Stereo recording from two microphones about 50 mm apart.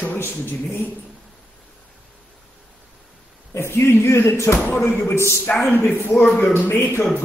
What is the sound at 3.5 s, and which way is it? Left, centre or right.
Speech, left.